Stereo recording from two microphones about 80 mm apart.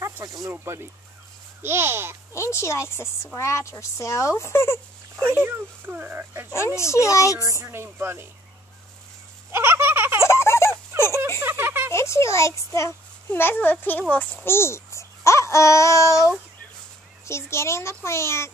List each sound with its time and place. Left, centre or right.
0.5 s speech: right
2.3 s speech: left
5.1 s speech: right
6.5 s speech: left
7.6 s speech: right
9.5 s a sound: right
10.2 s a sound: left
10.9 s a sound: right
11.9 s speech: left
13.3 s speech: left
17.3 s speech: left